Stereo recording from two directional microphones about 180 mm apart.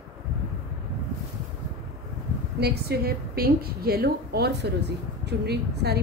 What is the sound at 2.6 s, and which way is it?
A woman's voice, 65° right (ahead or behind).